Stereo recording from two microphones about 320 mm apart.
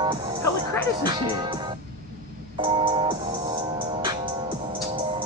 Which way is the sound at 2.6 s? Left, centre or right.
Centre.